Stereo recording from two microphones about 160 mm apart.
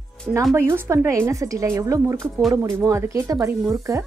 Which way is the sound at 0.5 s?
15° right (ahead or behind).